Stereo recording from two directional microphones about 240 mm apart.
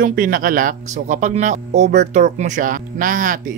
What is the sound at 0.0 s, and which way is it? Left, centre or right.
Speech, right.